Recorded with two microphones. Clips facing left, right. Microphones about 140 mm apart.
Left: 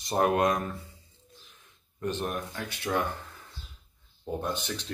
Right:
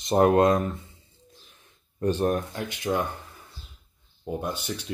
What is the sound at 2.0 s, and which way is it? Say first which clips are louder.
Speech: right 8 dB; 35° right (ahead or behind).